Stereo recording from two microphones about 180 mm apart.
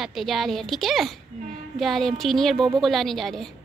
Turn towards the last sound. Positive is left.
turn(degrees=0)  # may be behind; listen again after turning